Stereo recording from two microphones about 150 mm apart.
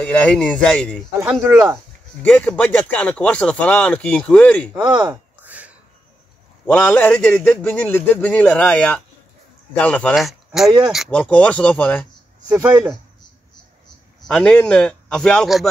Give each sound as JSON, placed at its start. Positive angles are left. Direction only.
{"t": 0.0, "sound": "speech", "side_deg": 10}
{"t": 1.4, "sound": "speech", "side_deg": -20}
{"t": 2.2, "sound": "speech", "side_deg": 10}
{"t": 5.1, "sound": "a sound", "side_deg": -10}
{"t": 6.6, "sound": "speech", "side_deg": 10}
{"t": 12.6, "sound": "speech", "side_deg": -10}
{"t": 14.2, "sound": "speech", "side_deg": 5}